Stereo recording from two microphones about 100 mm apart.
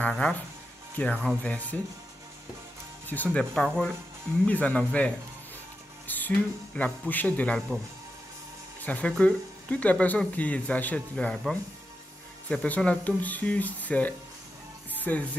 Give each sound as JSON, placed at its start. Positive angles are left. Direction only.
{"t": 0.1, "sound": "speech", "side_deg": 10}
{"t": 3.3, "sound": "speech", "side_deg": 5}
{"t": 8.8, "sound": "speech", "side_deg": 15}